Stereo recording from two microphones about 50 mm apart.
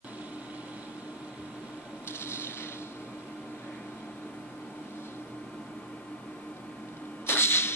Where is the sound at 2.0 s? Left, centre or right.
Left.